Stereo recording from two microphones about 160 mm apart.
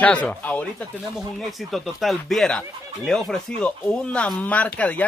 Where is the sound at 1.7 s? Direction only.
Centre (ahead or behind).